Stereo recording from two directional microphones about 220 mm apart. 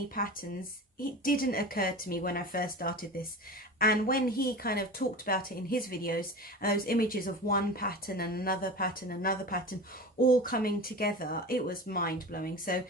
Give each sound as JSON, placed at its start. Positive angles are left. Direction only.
{"t": 0.1, "sound": "speech", "side_deg": 40}